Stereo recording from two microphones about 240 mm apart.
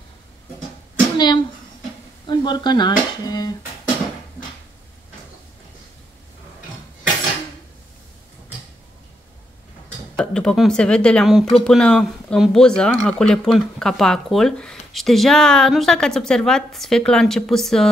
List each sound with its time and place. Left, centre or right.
1.1 s a sound: centre
2.2 s speech: centre
10.1 s speech: centre